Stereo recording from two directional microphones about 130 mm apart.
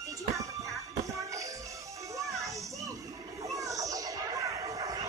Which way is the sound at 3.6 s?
25° right (ahead or behind).